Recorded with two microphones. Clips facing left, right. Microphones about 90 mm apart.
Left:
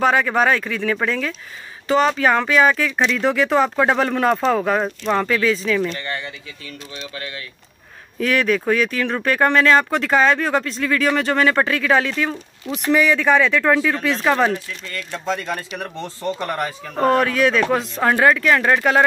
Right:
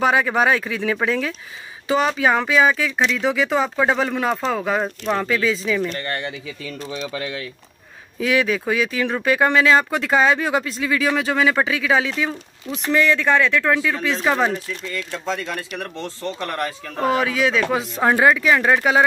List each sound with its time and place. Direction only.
0.0 s speech: 10° right (ahead or behind)
5.9 s speech: 50° right (ahead or behind)
8.2 s speech: 5° right (ahead or behind)
12.7 s speech: 5° left (ahead or behind)
15.0 s speech: 10° left (ahead or behind)
17.0 s speech: 5° right (ahead or behind)